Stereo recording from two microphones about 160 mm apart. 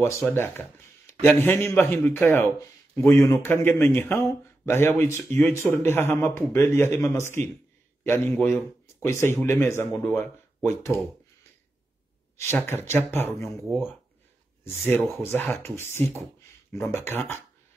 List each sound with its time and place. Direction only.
0.0 s a man's voice: 15° left (ahead or behind)
12.4 s a man's voice: 15° left (ahead or behind)
14.6 s a man's voice: 15° left (ahead or behind)